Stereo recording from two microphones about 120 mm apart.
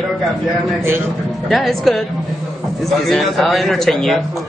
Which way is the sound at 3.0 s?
Centre (ahead or behind).